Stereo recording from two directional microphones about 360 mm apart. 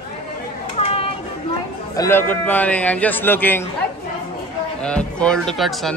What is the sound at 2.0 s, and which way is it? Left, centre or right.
A man's voice, centre.